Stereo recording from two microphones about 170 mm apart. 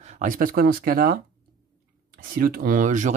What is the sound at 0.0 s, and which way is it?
Speech, 45° right (ahead or behind).